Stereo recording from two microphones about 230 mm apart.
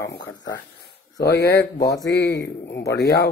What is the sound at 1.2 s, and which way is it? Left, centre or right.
Speech, left.